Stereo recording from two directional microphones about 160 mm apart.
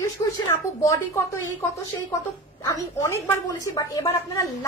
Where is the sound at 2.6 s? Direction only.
20° left (ahead or behind).